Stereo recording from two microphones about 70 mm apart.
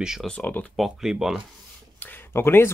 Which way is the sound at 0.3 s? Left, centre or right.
Left.